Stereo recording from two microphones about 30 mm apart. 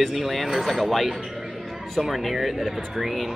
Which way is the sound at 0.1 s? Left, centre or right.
Centre.